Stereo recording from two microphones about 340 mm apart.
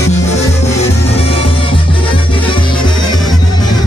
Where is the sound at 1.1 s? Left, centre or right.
Centre.